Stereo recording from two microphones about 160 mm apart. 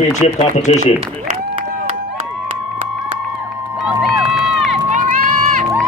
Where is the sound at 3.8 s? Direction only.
Centre (ahead or behind).